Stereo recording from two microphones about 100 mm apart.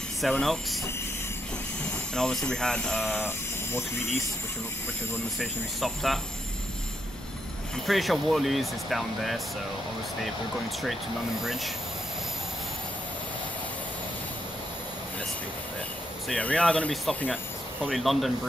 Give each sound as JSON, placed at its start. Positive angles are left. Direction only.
{"t": 0.2, "sound": "speech", "side_deg": 5}
{"t": 1.9, "sound": "speech", "side_deg": 10}
{"t": 3.3, "sound": "speech", "side_deg": 25}
{"t": 5.4, "sound": "speech", "side_deg": 0}
{"t": 7.8, "sound": "speech", "side_deg": 0}
{"t": 16.3, "sound": "speech", "side_deg": 10}